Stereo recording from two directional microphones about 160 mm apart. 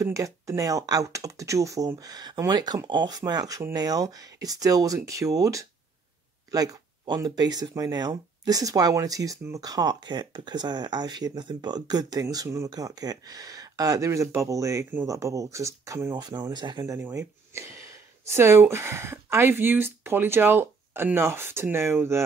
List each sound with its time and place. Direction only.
0.0 s speech: 20° right (ahead or behind)